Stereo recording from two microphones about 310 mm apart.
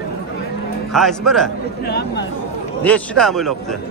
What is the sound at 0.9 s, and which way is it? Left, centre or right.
Speech, centre.